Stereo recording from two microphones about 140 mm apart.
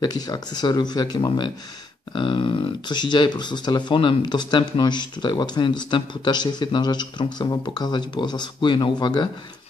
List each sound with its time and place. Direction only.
0.0 s speech: 30° left (ahead or behind)